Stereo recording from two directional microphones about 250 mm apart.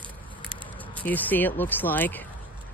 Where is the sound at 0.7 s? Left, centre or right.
Centre.